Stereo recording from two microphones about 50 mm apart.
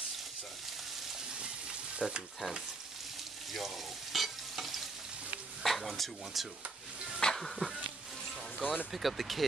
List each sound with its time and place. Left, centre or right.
2.0 s frying: centre
3.5 s frying: centre
5.6 s speech: centre
8.5 s speech: centre
8.9 s speech: centre